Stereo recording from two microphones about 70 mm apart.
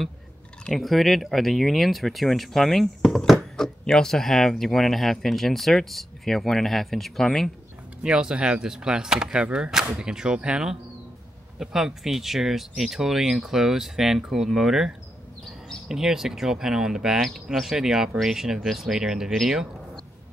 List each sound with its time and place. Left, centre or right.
0.7 s speech: centre
8.0 s speech: centre